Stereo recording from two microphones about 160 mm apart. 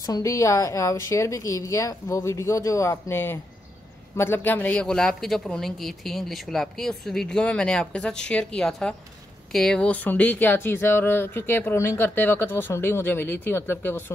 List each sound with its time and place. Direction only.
0.0 s a woman's voice: 20° left (ahead or behind)